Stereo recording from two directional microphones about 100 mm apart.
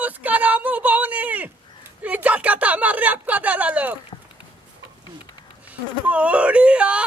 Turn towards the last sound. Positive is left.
turn(degrees=-10)  # may be behind; listen again after turning